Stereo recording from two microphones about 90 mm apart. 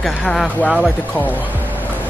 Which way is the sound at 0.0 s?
5° left (ahead or behind).